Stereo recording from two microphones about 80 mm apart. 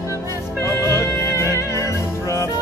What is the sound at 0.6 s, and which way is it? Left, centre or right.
Music, left.